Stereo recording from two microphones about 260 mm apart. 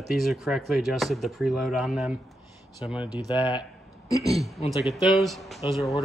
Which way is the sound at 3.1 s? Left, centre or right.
Centre.